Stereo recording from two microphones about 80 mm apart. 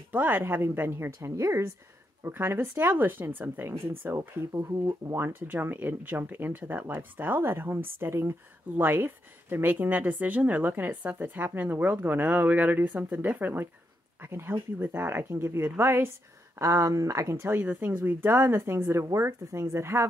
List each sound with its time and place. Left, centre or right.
0.1 s speech: right
4.5 s speech: right
5.0 s speech: right
5.5 s speech: right
16.5 s speech: right
17.6 s speech: right